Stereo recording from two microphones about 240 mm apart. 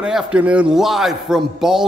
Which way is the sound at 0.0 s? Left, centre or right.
Centre.